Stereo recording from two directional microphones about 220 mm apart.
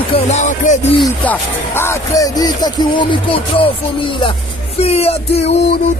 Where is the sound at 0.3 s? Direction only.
35° left (ahead or behind).